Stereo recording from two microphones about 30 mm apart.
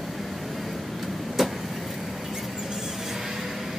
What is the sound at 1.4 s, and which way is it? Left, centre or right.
Vehicle, centre.